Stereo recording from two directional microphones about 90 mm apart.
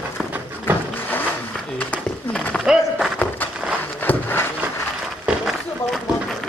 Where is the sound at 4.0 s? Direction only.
20° left (ahead or behind).